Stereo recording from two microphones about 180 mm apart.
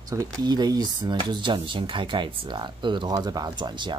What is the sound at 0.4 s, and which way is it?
Speech, 25° right (ahead or behind).